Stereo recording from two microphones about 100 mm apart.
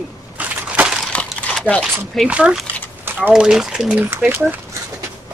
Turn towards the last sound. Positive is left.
turn(degrees=-15)  # may be behind; listen again after turning